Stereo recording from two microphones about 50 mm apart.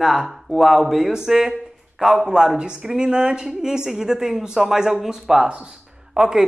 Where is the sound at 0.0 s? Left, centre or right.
Centre.